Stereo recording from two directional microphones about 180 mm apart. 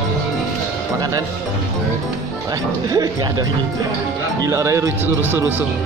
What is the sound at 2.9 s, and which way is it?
Speech, 20° right (ahead or behind).